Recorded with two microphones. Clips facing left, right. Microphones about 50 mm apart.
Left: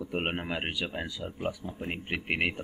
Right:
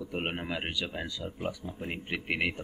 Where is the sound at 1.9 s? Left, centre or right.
Centre.